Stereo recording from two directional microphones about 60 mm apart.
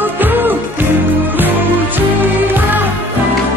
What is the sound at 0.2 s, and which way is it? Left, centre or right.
Music, right.